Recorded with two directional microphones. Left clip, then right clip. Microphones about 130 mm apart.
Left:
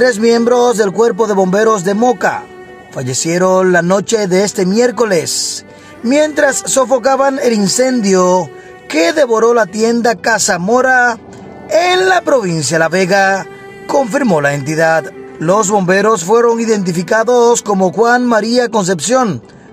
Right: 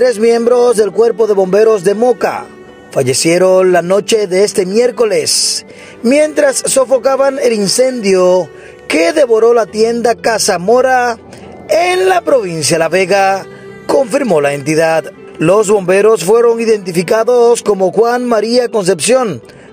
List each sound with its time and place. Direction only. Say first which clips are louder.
0.0 s speech: right 1 dB; 25° right (ahead or behind)